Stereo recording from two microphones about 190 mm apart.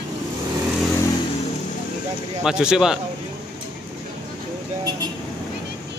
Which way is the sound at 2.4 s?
5° right (ahead or behind).